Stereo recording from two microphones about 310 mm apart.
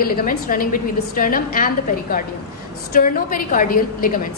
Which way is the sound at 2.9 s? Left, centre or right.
Left.